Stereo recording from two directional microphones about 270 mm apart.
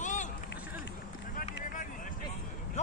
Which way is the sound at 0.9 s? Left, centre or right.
Left.